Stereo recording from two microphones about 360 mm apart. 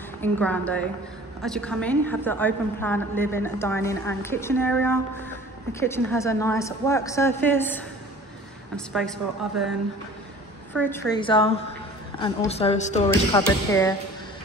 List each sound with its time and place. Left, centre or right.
0.2 s a woman's voice: centre
10.7 s a woman's voice: centre